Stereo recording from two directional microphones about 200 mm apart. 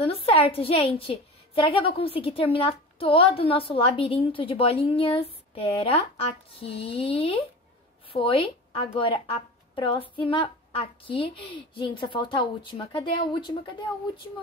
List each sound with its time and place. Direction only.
0.0 s a woman's voice: 30° left (ahead or behind)